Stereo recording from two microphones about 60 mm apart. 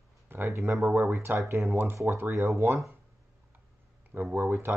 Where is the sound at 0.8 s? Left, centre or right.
Right.